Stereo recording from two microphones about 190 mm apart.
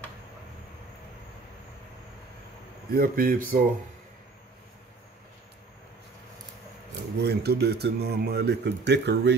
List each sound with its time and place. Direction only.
2.9 s speech: 50° right (ahead or behind)
7.2 s speech: 60° right (ahead or behind)